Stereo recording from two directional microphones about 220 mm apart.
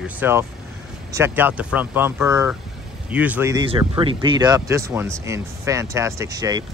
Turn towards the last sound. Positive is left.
turn(degrees=-15)  # may be behind; listen again after turning